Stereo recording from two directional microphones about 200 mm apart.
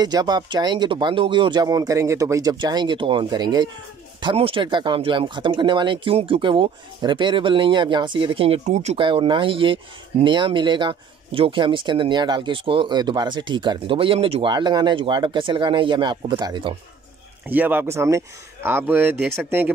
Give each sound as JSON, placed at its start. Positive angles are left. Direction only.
{"t": 0.0, "sound": "speech", "side_deg": -20}
{"t": 17.5, "sound": "speech", "side_deg": -10}